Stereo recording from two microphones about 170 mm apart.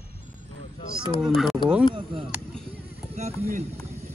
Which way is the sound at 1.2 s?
Centre (ahead or behind).